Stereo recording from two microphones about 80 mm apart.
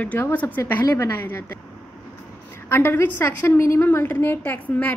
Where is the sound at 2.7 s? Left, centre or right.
Left.